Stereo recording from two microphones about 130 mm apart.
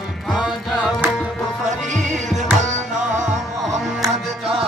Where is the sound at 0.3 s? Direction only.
Centre (ahead or behind).